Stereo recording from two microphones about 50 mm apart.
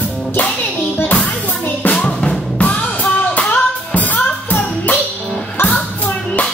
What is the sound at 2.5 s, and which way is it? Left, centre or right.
Music, left.